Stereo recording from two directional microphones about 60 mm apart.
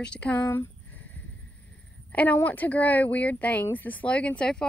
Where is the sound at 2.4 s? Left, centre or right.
Left.